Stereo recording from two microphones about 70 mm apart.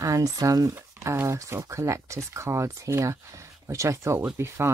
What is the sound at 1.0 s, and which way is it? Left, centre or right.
Speech, right.